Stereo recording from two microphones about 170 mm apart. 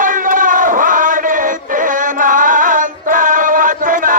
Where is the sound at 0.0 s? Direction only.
50° right (ahead or behind).